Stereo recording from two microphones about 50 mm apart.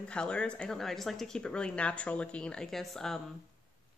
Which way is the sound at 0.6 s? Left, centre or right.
Centre.